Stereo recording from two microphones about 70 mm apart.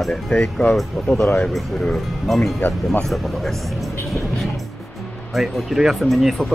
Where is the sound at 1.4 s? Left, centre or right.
Centre.